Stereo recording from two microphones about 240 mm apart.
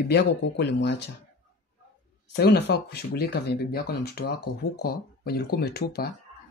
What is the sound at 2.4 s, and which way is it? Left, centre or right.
Speech, left.